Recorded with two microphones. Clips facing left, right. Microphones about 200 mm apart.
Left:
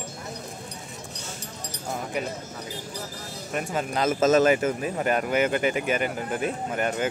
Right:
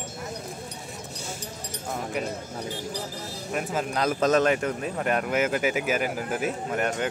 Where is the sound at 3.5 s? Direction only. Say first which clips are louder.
Even; centre (ahead or behind).